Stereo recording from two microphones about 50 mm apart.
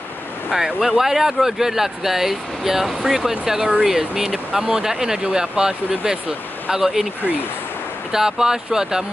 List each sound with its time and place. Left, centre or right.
0.5 s speech: centre
8.1 s speech: centre